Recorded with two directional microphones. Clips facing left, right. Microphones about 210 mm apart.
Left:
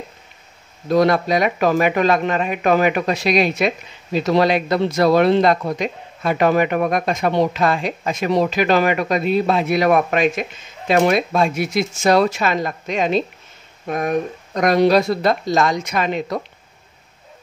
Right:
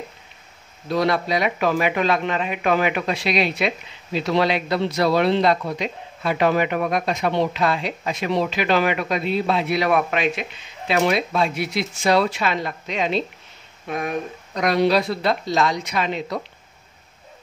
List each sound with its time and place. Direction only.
0.8 s speech: 45° left (ahead or behind)